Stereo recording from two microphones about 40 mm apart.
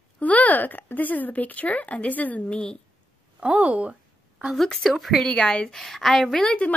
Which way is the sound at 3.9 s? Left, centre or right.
Right.